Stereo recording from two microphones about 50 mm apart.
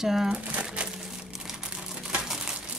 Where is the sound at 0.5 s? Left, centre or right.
Right.